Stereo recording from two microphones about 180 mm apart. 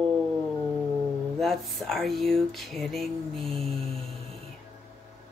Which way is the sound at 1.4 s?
Centre (ahead or behind).